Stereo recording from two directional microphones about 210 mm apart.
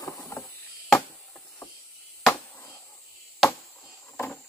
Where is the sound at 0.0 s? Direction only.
15° left (ahead or behind).